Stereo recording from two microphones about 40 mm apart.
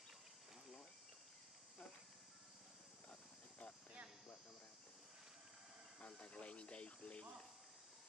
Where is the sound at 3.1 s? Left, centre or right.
Left.